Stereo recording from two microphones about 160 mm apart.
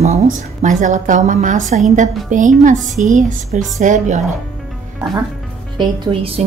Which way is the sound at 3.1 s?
50° right (ahead or behind).